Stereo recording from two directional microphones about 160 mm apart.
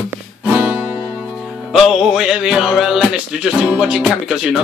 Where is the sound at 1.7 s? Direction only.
Centre (ahead or behind).